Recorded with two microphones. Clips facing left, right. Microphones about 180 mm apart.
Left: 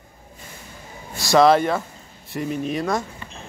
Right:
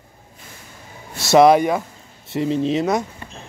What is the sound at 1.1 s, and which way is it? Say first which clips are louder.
Speech: right 3 dB; 25° right (ahead or behind).